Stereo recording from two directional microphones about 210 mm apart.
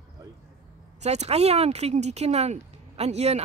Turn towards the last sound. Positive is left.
turn(degrees=-30)  # may be behind; listen again after turning